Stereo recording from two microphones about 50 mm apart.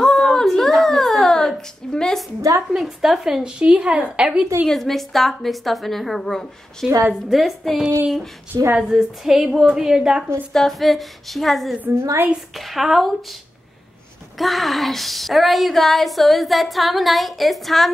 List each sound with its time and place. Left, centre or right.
0.0 s a sound: centre
2.7 s a woman's voice: centre
3.4 s a woman's voice: right
4.6 s speech: centre
8.7 s a woman's voice: centre
10.5 s speech: centre
11.9 s a woman's voice: right
12.5 s speech: centre
14.4 s speech: centre